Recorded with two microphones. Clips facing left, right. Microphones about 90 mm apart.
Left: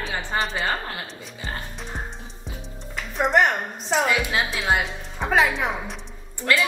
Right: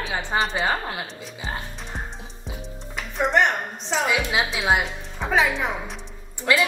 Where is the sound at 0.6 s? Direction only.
15° right (ahead or behind).